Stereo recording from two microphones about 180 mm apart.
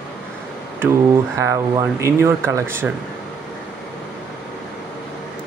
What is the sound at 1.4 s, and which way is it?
Speech, 15° right (ahead or behind).